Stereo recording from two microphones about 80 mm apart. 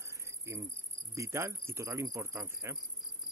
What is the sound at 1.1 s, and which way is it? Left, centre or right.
Insect, right.